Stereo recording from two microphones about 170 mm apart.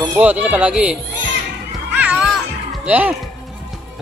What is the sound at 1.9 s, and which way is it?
Music, 5° right (ahead or behind).